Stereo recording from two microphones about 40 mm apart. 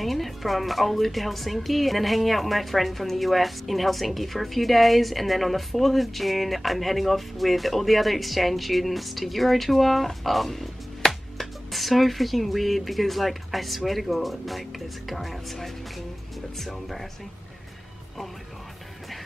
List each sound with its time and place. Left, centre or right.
0.0 s speech: centre